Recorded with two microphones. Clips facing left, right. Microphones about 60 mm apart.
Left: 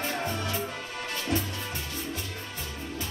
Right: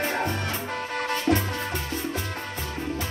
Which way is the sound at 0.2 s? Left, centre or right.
Right.